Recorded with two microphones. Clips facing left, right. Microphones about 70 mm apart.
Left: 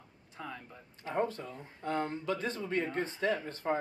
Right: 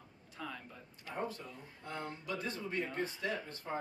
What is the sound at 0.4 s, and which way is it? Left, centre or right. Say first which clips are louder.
Speech: left 1 dB; left.